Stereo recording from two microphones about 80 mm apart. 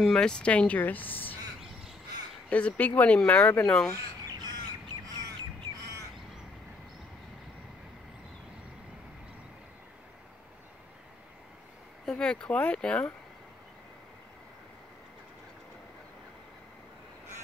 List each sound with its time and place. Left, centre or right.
0.0 s speech: centre; by 1.3 s left
2.5 s speech: centre
4.3 s bird: right
12.1 s speech: centre